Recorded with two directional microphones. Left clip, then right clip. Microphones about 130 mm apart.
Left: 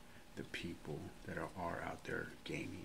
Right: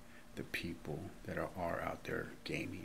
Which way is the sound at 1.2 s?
15° right (ahead or behind).